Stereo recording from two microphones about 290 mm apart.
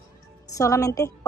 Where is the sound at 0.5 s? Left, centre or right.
Centre.